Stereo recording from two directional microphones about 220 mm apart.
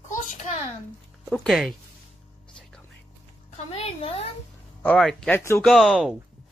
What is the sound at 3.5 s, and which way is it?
Speech, 25° left (ahead or behind).